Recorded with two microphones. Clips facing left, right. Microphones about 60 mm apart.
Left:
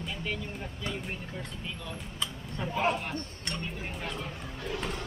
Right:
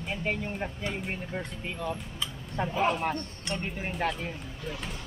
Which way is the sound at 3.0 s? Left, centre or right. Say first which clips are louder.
Right 5 dB; right.